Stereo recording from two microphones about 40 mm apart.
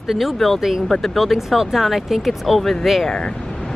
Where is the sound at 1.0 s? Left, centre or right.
Centre.